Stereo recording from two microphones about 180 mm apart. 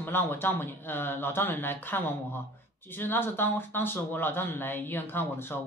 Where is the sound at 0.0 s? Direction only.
10° left (ahead or behind).